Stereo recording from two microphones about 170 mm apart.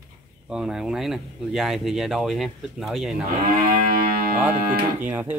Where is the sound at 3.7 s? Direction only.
55° right (ahead or behind).